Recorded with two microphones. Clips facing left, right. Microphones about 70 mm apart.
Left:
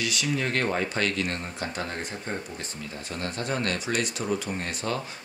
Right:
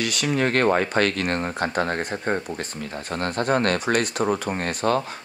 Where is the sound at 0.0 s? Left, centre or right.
Right.